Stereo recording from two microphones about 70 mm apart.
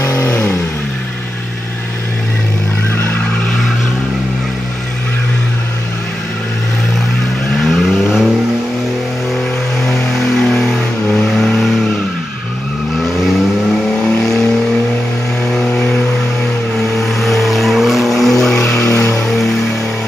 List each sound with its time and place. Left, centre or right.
0.1 s vehicle: left
7.5 s vehicle: centre
9.8 s vehicle: centre
13.0 s vehicle: centre
15.5 s vehicle: centre
17.0 s vehicle: centre
18.9 s vehicle: left
19.2 s music: centre